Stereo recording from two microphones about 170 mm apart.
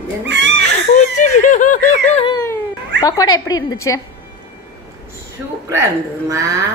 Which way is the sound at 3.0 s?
20° left (ahead or behind).